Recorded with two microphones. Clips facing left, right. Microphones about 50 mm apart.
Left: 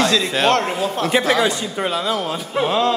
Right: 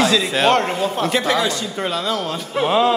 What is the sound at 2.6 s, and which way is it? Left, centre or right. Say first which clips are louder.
Music: right 2 dB; centre.